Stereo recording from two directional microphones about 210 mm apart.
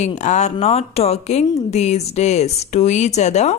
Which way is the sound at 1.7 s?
30° left (ahead or behind).